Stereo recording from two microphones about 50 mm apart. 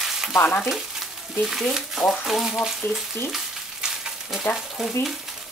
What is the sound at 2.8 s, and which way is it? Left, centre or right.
Speech, left.